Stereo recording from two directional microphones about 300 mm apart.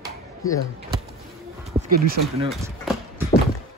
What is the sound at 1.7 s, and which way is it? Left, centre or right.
Speech, right.